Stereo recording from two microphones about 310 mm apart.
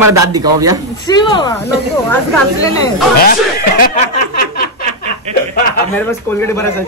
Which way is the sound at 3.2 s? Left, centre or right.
Left.